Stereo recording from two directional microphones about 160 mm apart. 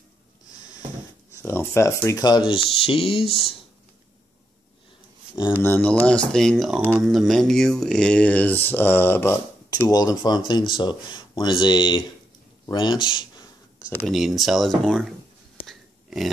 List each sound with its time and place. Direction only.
1.4 s speech: 15° left (ahead or behind); by 3.3 s 35° left (ahead or behind)
5.5 s speech: 10° left (ahead or behind); by 13.5 s 30° left (ahead or behind)
13.7 s a sound: 5° right (ahead or behind)